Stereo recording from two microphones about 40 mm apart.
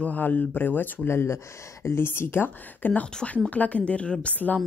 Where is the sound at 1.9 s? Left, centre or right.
Left.